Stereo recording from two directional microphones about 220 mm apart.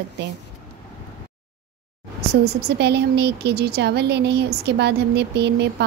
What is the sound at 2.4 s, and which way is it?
A woman's voice, 50° right (ahead or behind).